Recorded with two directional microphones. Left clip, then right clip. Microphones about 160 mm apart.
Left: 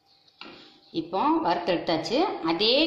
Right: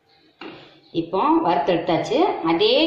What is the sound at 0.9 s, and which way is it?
A woman's voice, 90° left.